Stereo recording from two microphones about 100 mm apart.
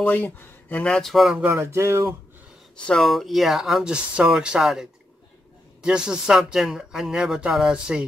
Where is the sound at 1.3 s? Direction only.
25° right (ahead or behind).